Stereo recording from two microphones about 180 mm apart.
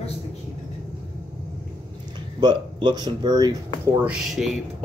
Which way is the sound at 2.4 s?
25° right (ahead or behind).